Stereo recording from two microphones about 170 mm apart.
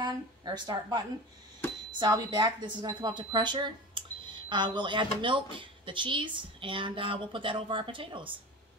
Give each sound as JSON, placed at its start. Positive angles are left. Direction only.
{"t": 0.0, "sound": "a woman's voice", "side_deg": -25}